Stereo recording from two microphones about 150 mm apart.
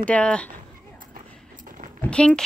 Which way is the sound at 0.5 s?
65° right (ahead or behind).